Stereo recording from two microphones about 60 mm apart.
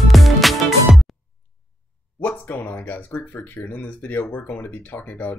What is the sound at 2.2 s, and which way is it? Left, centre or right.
Speech, left.